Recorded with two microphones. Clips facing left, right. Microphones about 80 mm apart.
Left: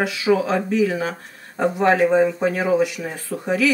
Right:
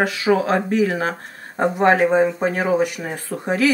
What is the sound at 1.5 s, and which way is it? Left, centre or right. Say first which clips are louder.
Speech: right 2 dB; right.